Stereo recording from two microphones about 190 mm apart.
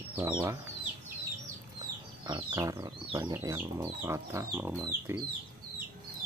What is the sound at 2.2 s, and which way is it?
Speech, 25° right (ahead or behind).